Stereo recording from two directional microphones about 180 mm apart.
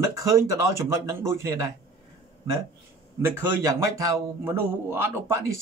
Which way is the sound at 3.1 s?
15° right (ahead or behind).